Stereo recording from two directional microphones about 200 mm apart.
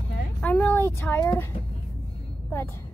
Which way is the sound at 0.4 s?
10° left (ahead or behind).